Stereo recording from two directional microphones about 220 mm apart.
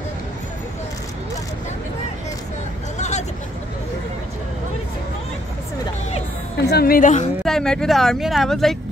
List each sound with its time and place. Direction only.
3.0 s vehicle: 30° left (ahead or behind)
6.6 s a woman's voice: 45° left (ahead or behind)
7.4 s speech: 5° left (ahead or behind)